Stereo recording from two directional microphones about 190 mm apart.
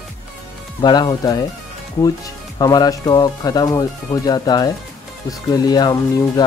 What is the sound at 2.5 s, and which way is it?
Speech, 20° left (ahead or behind).